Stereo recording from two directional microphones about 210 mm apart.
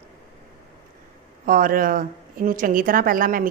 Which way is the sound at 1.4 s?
40° right (ahead or behind).